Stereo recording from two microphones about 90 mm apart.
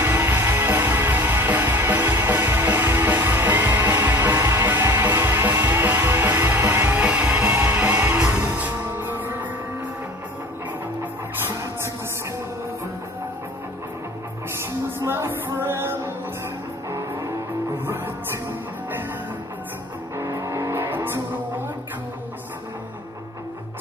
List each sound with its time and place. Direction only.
0.0 s music: 25° right (ahead or behind)
11.4 s music: 30° right (ahead or behind)
14.6 s music: 30° right (ahead or behind)
20.2 s vehicle: 35° right (ahead or behind)